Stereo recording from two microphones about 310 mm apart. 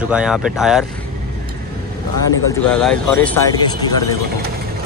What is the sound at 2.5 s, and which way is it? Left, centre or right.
Speech, centre.